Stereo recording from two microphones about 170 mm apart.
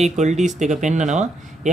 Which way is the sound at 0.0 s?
45° right (ahead or behind).